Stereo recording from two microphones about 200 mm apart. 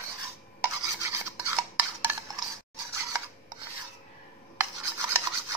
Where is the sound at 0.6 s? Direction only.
15° right (ahead or behind).